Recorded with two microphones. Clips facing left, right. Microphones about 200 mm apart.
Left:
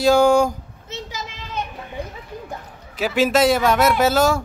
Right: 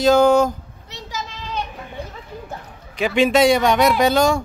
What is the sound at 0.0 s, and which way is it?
Speech, 10° left (ahead or behind).